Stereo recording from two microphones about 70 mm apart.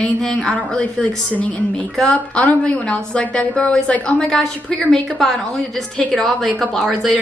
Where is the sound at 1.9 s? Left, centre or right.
Centre.